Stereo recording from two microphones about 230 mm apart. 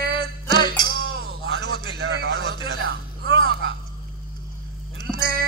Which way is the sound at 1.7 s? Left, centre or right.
Right.